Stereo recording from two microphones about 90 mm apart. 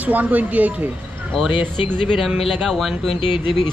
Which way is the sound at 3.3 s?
70° left (ahead or behind).